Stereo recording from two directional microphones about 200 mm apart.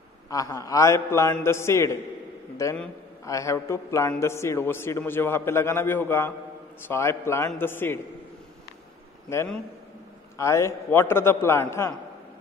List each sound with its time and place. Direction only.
0.3 s a man's voice: 15° left (ahead or behind)
9.3 s a man's voice: 15° left (ahead or behind)